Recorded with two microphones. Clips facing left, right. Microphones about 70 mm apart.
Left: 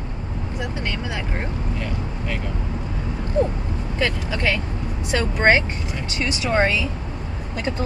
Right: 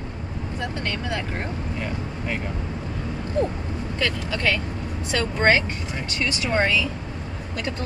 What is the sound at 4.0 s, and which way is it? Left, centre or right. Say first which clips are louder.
Speech: left 2 dB; centre.